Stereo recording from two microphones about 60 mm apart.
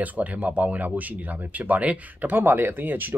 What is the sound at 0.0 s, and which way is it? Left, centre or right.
Speech, right.